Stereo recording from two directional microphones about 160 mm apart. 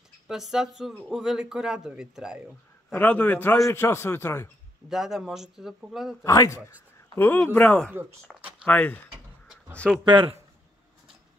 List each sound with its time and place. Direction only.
0.3 s speech: 5° right (ahead or behind)
2.9 s a man's voice: 10° left (ahead or behind)
4.8 s speech: centre (ahead or behind)
6.2 s a man's voice: 20° left (ahead or behind)
7.9 s speech: 15° right (ahead or behind)
8.6 s a man's voice: 10° left (ahead or behind)
10.0 s speech: 30° right (ahead or behind)